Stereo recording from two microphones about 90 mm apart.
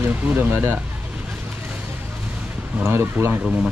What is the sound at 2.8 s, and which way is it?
Speech, 30° right (ahead or behind).